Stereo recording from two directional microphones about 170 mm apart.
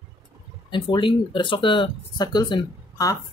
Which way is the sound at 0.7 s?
30° left (ahead or behind).